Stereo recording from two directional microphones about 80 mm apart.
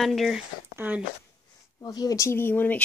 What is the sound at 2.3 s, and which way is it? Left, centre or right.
Speech, left.